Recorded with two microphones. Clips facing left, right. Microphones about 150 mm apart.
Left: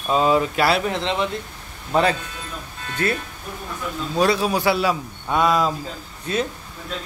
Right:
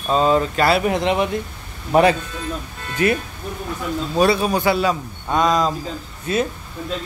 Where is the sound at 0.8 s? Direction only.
15° right (ahead or behind).